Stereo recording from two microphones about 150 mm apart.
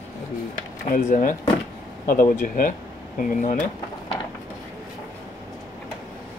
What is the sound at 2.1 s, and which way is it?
Speech, 70° left (ahead or behind).